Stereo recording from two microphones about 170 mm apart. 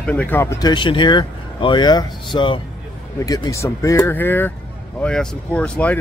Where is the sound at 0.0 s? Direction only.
10° left (ahead or behind).